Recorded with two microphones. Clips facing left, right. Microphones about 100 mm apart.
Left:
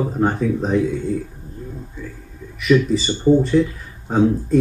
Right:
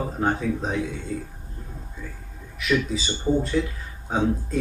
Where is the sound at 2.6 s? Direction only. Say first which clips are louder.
Left 8 dB; centre (ahead or behind).